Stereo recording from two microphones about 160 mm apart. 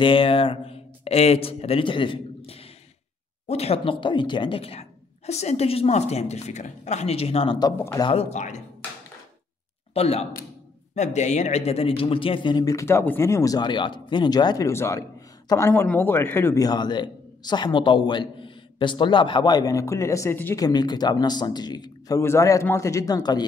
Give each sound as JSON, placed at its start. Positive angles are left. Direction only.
{"t": 0.0, "sound": "a woman's voice", "side_deg": 35}
{"t": 7.5, "sound": "speech", "side_deg": 20}
{"t": 8.1, "sound": "speech", "side_deg": 40}
{"t": 9.9, "sound": "a woman's voice", "side_deg": 40}
{"t": 20.6, "sound": "speech", "side_deg": 25}